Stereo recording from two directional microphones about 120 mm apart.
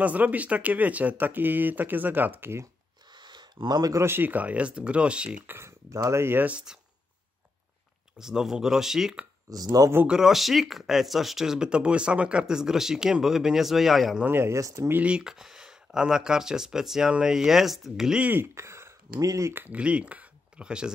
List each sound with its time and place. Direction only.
0.0 s speech: 10° right (ahead or behind)
3.1 s speech: 40° right (ahead or behind); by 5.6 s 10° right (ahead or behind)
5.9 s speech: 25° right (ahead or behind); by 6.8 s 10° right (ahead or behind)
8.2 s speech: 5° right (ahead or behind)
9.5 s speech: 30° right (ahead or behind)
9.9 s speech: 5° right (ahead or behind)
14.2 s speech: 20° right (ahead or behind)
15.0 s speech: 10° right (ahead or behind)